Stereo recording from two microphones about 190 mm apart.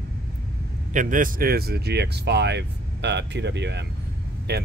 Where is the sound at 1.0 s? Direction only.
45° right (ahead or behind).